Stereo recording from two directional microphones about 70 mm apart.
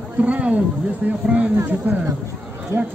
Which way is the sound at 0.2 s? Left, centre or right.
Centre.